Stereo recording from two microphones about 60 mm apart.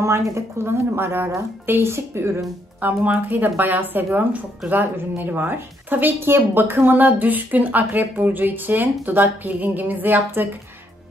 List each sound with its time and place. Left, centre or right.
0.0 s speech: right
3.0 s a woman's voice: right